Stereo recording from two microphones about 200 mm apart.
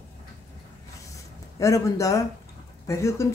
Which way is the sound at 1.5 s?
15° left (ahead or behind).